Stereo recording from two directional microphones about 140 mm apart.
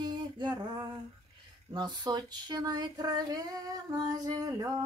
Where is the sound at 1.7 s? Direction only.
30° right (ahead or behind).